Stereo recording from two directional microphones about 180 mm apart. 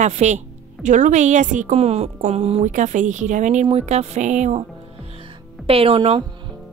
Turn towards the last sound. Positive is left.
turn(degrees=-30)  # may be behind; listen again after turning